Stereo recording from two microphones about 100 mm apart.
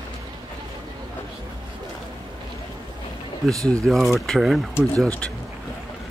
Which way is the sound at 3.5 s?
35° right (ahead or behind).